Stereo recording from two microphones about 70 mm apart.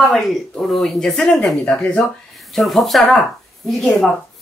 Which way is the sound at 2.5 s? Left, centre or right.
Centre.